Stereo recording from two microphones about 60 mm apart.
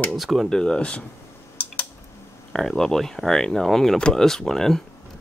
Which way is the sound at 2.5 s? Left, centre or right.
Centre.